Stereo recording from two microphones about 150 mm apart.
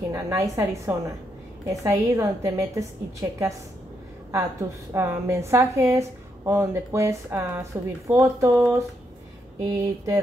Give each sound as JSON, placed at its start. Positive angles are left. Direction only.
{"t": 0.1, "sound": "a woman's voice", "side_deg": -20}